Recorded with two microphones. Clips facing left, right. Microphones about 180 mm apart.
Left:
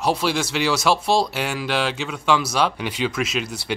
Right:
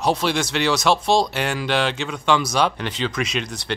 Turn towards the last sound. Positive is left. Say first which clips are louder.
# left 1 dB
turn(degrees=5)  # may be behind; listen again after turning